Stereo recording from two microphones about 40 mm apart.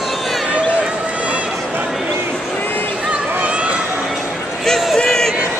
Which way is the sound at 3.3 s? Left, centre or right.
Right.